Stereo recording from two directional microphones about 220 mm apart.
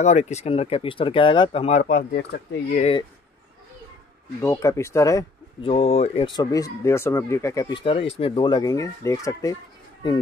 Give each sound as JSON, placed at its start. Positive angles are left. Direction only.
{"t": 0.0, "sound": "speech", "side_deg": 30}
{"t": 2.8, "sound": "speech", "side_deg": 25}
{"t": 4.4, "sound": "speech", "side_deg": 15}
{"t": 5.7, "sound": "speech", "side_deg": 25}